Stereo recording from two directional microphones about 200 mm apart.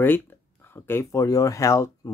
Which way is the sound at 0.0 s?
10° left (ahead or behind).